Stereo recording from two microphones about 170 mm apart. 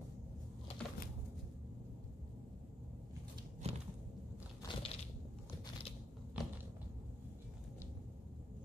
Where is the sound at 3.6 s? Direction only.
35° right (ahead or behind).